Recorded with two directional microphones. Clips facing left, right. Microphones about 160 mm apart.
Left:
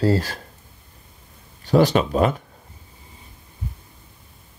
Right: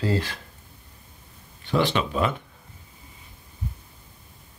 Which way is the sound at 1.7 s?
40° left (ahead or behind).